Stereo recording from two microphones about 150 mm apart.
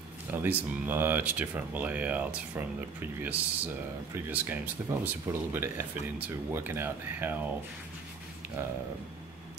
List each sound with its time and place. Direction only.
0.3 s speech: 10° right (ahead or behind)
8.6 s speech: 15° right (ahead or behind)